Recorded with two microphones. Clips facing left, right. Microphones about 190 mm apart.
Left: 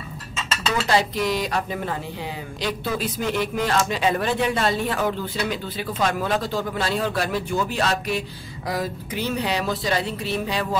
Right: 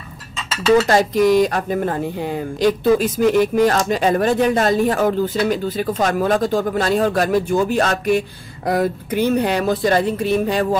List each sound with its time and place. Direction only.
0.8 s speech: 45° right (ahead or behind)